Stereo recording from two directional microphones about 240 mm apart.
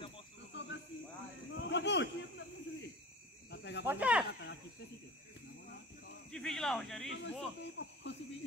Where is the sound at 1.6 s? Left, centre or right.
Left.